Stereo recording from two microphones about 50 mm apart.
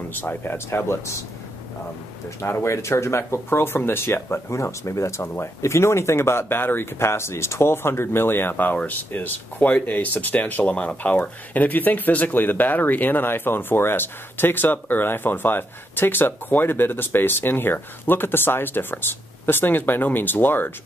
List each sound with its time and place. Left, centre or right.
0.1 s speech: left
0.4 s speech: left
2.6 s speech: left